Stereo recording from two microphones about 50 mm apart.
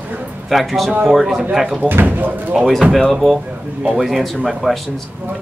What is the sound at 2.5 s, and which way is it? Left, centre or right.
Speech, centre.